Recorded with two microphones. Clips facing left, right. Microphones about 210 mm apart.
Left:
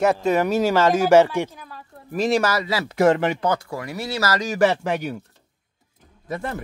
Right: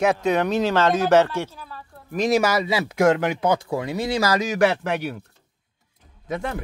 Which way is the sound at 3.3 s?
10° right (ahead or behind).